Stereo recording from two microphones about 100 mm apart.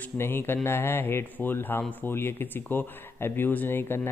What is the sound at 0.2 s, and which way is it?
Speech, 20° left (ahead or behind).